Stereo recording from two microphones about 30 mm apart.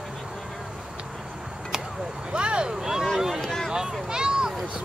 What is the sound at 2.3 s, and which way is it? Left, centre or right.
Vehicle, right.